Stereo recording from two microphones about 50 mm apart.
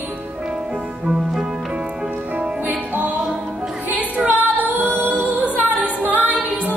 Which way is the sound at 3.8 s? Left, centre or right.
Right.